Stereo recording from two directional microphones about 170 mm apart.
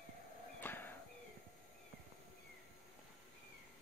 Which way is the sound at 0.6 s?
10° left (ahead or behind).